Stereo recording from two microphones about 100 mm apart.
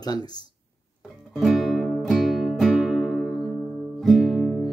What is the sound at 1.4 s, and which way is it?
Music, centre (ahead or behind).